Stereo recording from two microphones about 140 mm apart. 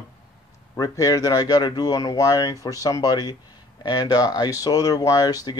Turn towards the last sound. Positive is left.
turn(degrees=25)  # may be behind; listen again after turning